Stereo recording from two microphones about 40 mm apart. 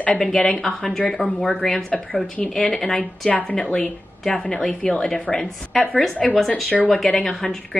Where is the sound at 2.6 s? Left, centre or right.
Centre.